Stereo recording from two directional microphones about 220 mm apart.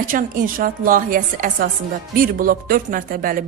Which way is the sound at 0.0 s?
40° right (ahead or behind).